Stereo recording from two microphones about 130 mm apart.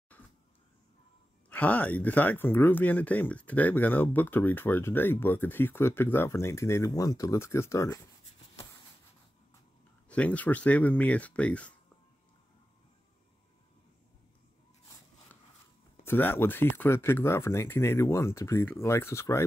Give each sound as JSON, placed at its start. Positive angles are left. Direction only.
{"t": 1.5, "sound": "speech", "side_deg": 15}
{"t": 10.0, "sound": "speech", "side_deg": 10}
{"t": 16.1, "sound": "speech", "side_deg": 15}